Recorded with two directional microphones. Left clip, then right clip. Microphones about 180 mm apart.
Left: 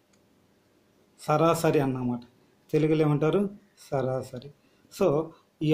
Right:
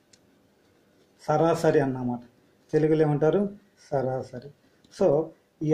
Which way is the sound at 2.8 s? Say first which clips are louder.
Right 3 dB; 5° left (ahead or behind).